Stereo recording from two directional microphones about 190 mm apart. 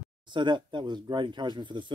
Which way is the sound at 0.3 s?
25° right (ahead or behind).